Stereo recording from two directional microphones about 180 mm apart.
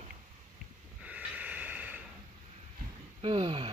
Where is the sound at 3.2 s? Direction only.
30° right (ahead or behind).